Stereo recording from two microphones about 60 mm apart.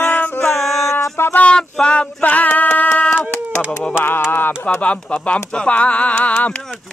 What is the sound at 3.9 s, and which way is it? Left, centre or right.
Speech, left.